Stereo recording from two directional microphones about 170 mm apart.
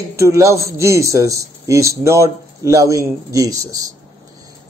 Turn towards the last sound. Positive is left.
turn(degrees=-20)  # may be behind; listen again after turning